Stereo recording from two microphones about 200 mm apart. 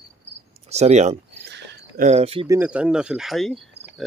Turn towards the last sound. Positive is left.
turn(degrees=0)  # may be behind; listen again after turning